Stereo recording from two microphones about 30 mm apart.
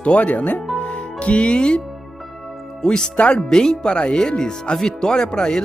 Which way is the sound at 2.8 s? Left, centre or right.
Left.